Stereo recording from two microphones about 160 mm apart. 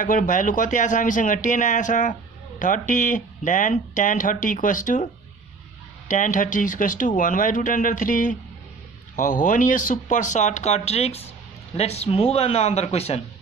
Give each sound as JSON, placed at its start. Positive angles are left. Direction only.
{"t": 0.0, "sound": "speech", "side_deg": 55}
{"t": 6.0, "sound": "speech", "side_deg": 55}